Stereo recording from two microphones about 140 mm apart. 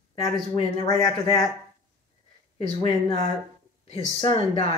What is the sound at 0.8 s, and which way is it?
Speech, 25° left (ahead or behind).